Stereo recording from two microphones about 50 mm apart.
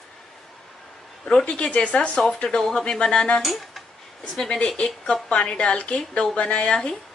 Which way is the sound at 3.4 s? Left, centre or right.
Centre.